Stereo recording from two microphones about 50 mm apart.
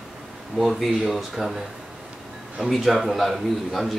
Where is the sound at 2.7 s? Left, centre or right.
Centre.